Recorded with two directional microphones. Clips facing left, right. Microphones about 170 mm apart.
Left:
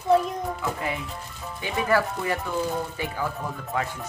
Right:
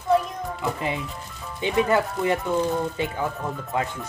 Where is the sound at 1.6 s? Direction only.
20° right (ahead or behind).